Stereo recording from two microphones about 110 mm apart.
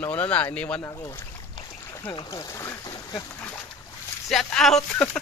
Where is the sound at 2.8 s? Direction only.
35° left (ahead or behind).